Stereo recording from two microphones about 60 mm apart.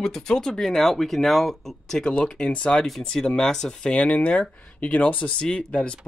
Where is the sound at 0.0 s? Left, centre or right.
Centre.